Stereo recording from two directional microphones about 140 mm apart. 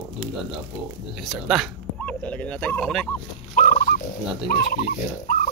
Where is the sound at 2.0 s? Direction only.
10° left (ahead or behind).